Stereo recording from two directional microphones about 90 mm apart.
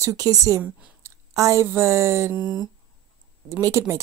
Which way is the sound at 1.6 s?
30° right (ahead or behind).